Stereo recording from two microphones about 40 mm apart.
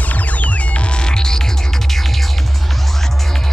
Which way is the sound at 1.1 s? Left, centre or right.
Centre.